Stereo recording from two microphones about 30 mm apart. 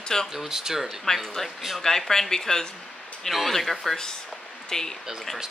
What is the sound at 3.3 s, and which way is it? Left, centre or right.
Speech, centre.